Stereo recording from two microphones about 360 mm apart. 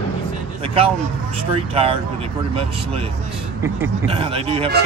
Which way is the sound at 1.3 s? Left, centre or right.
Centre.